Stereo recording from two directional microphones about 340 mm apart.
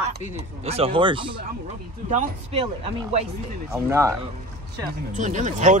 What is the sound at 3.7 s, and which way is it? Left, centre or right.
Speech, centre.